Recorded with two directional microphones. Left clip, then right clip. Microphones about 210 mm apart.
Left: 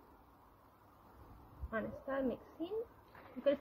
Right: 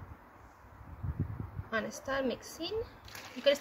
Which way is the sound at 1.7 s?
15° right (ahead or behind).